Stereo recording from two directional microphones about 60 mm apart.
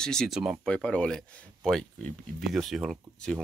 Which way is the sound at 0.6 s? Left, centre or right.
Centre.